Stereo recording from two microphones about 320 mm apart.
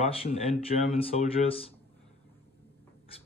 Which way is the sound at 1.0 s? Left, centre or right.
Centre.